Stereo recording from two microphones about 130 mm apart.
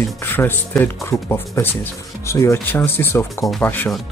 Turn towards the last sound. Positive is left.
turn(degrees=15)  # may be behind; listen again after turning